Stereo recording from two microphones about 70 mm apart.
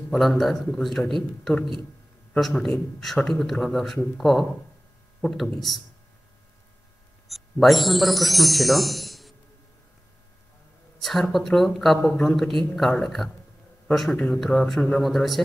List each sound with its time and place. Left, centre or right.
0.1 s speech: centre
7.2 s speech: centre
11.0 s speech: centre